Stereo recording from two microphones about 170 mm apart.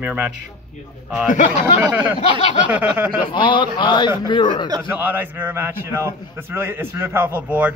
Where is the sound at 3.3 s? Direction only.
25° left (ahead or behind).